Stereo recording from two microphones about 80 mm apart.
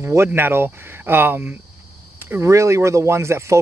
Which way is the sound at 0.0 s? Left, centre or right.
Right.